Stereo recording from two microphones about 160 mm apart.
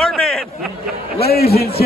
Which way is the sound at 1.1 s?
75° left (ahead or behind).